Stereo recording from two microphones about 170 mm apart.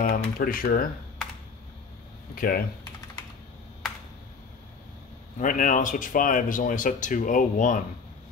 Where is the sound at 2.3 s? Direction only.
60° left (ahead or behind).